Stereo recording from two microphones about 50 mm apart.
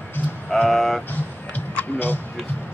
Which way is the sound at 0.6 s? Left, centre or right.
Centre.